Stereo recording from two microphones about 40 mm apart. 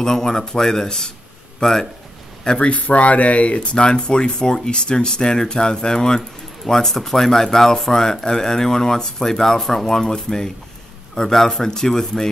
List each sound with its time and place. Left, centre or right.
0.0 s speech: centre
2.6 s speech: left; by 12.3 s centre